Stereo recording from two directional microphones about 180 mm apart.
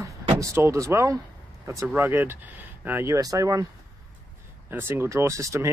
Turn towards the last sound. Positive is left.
turn(degrees=-15)  # may be behind; listen again after turning